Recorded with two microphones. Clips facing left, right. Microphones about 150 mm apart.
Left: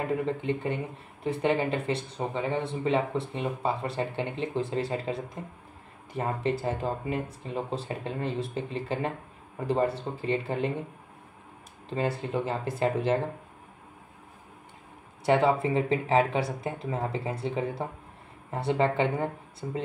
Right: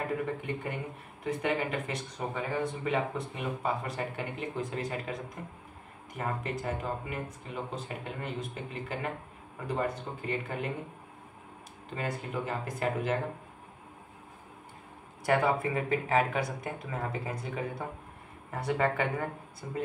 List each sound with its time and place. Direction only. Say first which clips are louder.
0.0 s speech: left 4 dB; 25° left (ahead or behind)
11.9 s speech: left 6 dB; 30° left (ahead or behind)
15.2 s speech: left 4 dB; 25° left (ahead or behind)